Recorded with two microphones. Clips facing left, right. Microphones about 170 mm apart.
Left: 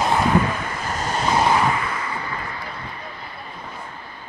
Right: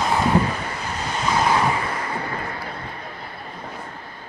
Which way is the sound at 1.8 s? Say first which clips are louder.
Right 1 dB; 45° right (ahead or behind).